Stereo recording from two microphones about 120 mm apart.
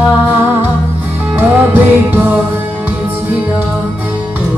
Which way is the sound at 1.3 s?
15° right (ahead or behind).